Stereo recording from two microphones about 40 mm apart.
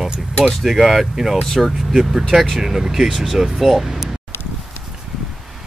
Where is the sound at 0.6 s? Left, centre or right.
Centre.